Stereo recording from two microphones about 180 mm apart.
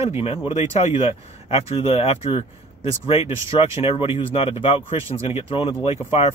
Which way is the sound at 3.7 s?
35° left (ahead or behind).